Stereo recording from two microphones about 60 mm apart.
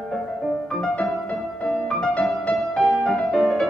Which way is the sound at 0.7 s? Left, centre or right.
Centre.